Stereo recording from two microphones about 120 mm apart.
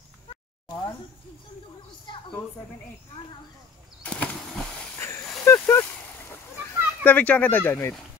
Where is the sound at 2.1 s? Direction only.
40° left (ahead or behind).